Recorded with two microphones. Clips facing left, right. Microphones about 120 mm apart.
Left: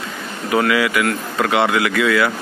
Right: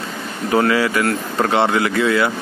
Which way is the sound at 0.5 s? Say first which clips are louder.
Right 1 dB; 35° right (ahead or behind).